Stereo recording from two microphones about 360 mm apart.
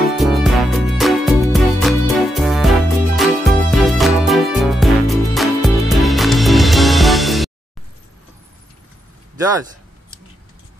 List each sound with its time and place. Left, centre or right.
0.1 s music: centre